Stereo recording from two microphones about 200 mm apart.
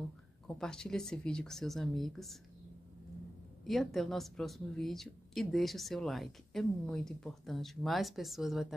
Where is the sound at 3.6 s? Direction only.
Centre (ahead or behind).